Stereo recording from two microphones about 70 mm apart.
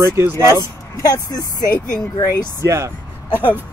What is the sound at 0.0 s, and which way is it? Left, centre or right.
Speech, right.